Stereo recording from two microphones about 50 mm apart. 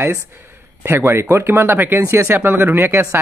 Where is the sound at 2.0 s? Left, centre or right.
Right.